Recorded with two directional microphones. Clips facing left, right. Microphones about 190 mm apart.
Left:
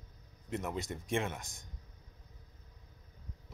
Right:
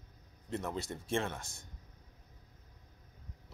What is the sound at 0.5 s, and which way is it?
Speech, 15° left (ahead or behind).